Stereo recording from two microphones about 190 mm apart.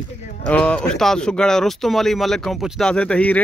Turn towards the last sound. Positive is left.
turn(degrees=5)  # may be behind; listen again after turning